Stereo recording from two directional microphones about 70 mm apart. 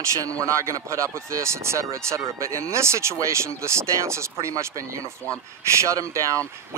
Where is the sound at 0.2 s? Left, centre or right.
Right.